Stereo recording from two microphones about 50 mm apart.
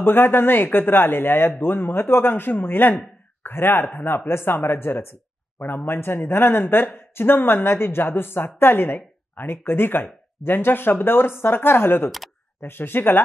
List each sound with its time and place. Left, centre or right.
0.0 s speech: left